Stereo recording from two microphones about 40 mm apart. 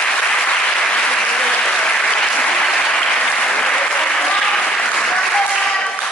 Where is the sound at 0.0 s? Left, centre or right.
Left.